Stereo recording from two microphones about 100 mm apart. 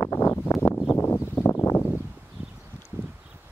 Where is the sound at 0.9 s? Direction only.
25° left (ahead or behind).